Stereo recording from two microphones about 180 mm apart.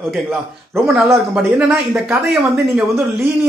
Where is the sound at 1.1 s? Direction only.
5° right (ahead or behind).